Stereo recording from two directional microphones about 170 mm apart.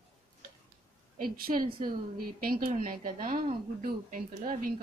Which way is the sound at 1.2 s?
60° right (ahead or behind).